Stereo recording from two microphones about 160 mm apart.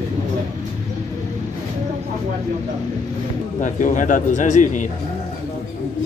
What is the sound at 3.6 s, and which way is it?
A man's voice, 50° left (ahead or behind).